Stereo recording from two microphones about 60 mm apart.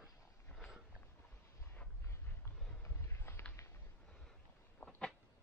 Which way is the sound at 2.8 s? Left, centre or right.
Left.